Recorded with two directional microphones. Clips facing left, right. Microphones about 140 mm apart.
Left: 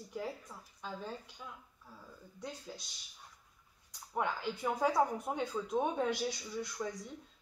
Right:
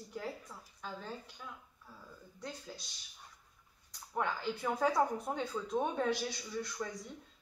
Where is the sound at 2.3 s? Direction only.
15° left (ahead or behind).